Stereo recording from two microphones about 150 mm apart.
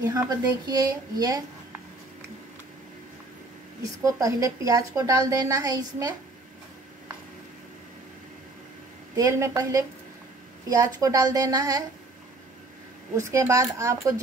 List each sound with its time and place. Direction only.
0.7 s a woman's voice: 25° right (ahead or behind)
3.8 s a woman's voice: 20° right (ahead or behind)
9.1 s a woman's voice: 20° right (ahead or behind)
13.1 s a woman's voice: 20° right (ahead or behind)